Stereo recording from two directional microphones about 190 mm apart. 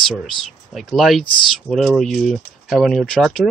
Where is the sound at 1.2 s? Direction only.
25° left (ahead or behind).